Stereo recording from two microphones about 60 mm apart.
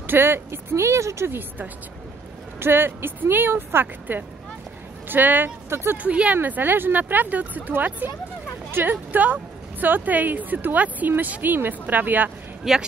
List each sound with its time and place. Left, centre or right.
0.0 s speech: right
2.6 s speech: right
5.7 s speech: right
6.0 s speech: right
6.3 s speech: right
12.6 s a man's voice: centre